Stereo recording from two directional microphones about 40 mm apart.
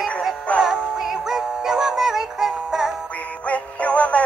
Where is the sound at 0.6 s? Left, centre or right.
Centre.